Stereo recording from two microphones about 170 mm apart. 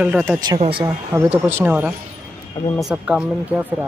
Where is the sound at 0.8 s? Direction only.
15° right (ahead or behind).